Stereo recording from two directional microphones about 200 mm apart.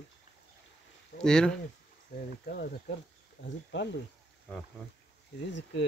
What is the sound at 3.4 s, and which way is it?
Speech, 60° left (ahead or behind).